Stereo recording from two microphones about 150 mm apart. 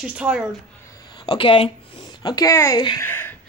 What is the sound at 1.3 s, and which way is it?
Speech, 35° left (ahead or behind).